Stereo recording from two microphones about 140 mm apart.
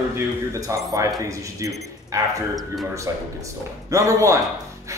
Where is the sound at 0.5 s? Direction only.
20° right (ahead or behind).